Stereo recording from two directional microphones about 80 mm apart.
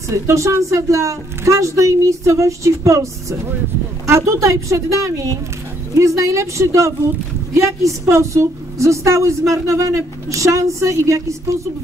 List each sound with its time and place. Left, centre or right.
0.1 s a woman's voice: right